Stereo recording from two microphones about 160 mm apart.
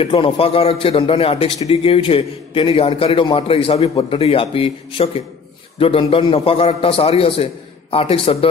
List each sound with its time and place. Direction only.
0.0 s a man's voice: 35° left (ahead or behind)